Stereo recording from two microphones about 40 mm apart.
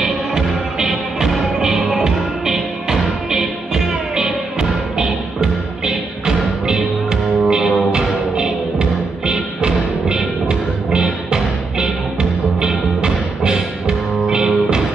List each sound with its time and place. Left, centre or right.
0.0 s music: centre